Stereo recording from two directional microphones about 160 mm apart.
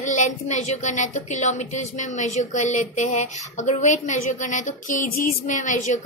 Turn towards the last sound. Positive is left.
turn(degrees=50)  # may be behind; listen again after turning